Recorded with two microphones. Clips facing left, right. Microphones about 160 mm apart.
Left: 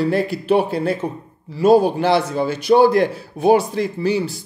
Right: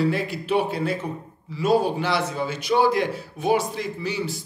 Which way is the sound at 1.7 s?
35° left (ahead or behind).